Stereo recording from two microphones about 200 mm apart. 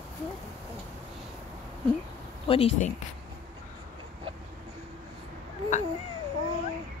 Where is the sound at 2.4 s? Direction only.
30° left (ahead or behind).